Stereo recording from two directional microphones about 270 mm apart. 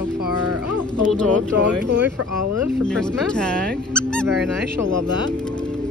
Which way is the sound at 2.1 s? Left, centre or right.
Right.